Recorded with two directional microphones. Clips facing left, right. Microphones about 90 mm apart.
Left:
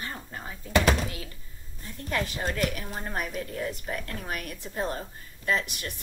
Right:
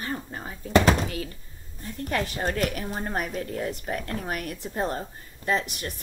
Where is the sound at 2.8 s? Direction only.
25° right (ahead or behind).